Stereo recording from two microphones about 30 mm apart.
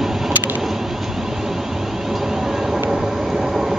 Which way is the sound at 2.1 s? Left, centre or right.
Centre.